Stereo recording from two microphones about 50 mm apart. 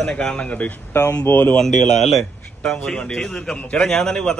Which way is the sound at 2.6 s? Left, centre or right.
Centre.